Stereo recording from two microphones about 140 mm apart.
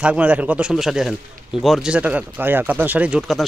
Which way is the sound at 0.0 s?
10° right (ahead or behind).